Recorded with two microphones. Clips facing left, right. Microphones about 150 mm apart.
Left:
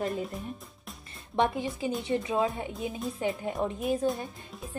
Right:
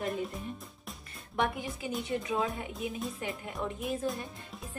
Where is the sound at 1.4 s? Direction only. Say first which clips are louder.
Left 5 dB; 25° left (ahead or behind).